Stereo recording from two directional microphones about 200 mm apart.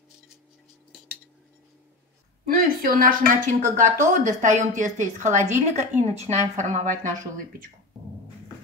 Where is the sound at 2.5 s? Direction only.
45° right (ahead or behind).